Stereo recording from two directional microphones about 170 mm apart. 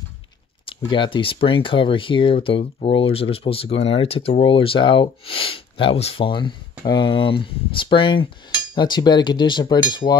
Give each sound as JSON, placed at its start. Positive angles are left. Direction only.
{"t": 0.7, "sound": "speech", "side_deg": 30}